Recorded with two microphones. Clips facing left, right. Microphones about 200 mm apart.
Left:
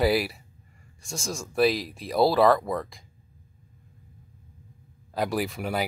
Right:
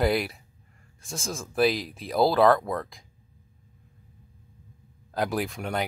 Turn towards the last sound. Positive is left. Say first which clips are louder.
# left 1 dB
turn(degrees=5)  # may be behind; listen again after turning